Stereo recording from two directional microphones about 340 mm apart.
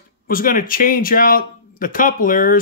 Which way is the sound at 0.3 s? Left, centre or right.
Left.